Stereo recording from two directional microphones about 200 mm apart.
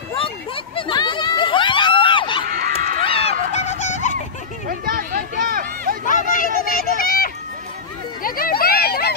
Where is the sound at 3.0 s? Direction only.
30° left (ahead or behind).